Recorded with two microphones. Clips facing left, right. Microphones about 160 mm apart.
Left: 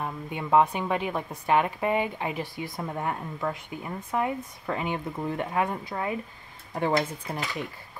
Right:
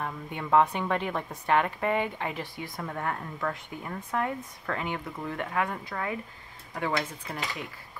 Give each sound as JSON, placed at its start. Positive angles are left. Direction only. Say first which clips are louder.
{"t": 0.0, "sound": "speech", "louder": "left 2 dB", "side_deg": 15}